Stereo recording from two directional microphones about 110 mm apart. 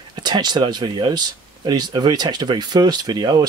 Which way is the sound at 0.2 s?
40° right (ahead or behind).